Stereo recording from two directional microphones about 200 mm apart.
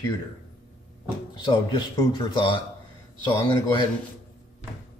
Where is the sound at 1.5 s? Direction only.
20° left (ahead or behind).